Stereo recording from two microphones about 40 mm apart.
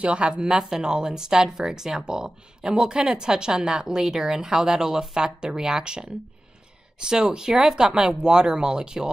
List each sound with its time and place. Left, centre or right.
0.0 s speech: right